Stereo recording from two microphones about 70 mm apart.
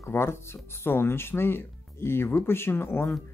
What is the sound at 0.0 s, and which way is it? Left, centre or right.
Speech, left.